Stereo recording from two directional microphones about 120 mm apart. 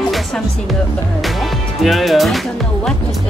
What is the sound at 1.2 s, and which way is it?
Music, centre (ahead or behind).